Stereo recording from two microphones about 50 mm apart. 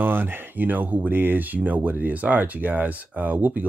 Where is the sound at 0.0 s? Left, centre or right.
Right.